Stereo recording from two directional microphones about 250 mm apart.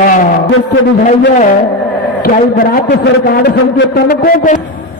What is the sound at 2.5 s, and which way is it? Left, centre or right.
A man's voice, left.